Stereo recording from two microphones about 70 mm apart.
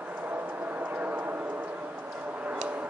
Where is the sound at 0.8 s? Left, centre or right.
Right.